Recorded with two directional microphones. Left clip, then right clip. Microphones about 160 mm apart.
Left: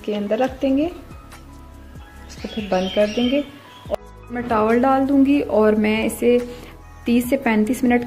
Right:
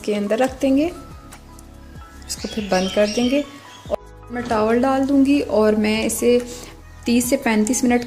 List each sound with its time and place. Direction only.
0.0 s speech: 25° right (ahead or behind)
2.7 s speech: 25° right (ahead or behind)